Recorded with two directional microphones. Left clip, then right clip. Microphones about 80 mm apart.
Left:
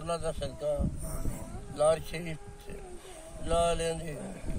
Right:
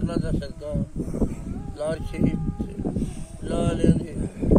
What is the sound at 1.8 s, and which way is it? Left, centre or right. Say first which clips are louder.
Speech: even; right.